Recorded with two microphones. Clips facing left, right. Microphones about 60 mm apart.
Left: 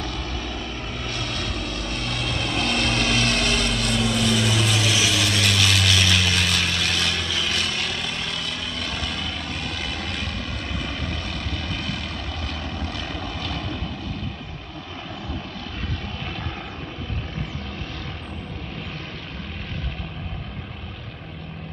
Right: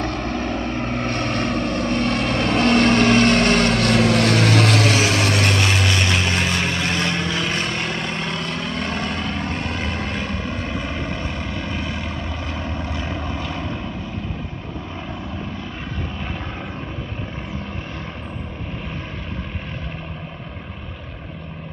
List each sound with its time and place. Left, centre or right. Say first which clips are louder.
0.0 s vehicle: right 7 dB; right
11.5 s vehicle: right 3 dB; right